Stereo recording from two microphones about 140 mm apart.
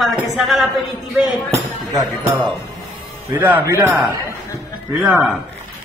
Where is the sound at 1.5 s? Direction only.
20° right (ahead or behind).